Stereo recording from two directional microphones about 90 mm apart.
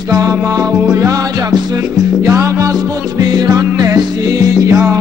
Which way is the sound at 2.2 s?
35° right (ahead or behind).